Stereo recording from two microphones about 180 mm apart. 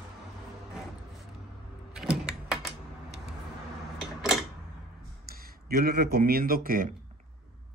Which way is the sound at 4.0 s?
Centre (ahead or behind).